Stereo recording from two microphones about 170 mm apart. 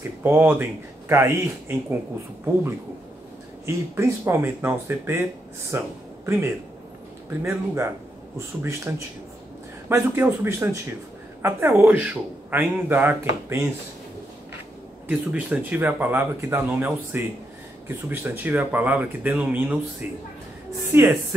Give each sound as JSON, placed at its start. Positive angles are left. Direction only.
{"t": 0.0, "sound": "speech", "side_deg": -15}
{"t": 3.6, "sound": "speech", "side_deg": -15}
{"t": 15.0, "sound": "speech", "side_deg": -10}